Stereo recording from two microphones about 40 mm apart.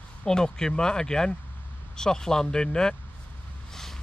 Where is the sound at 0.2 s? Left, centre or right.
Centre.